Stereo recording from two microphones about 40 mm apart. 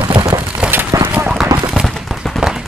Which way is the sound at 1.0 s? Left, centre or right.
Right.